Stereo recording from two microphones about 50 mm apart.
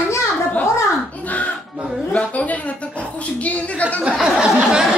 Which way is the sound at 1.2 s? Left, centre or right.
Left.